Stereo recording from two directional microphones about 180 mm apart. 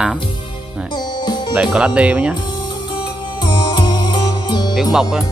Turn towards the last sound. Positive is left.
turn(degrees=-5)  # may be behind; listen again after turning